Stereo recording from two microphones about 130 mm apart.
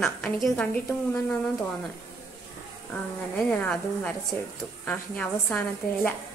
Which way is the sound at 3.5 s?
10° left (ahead or behind).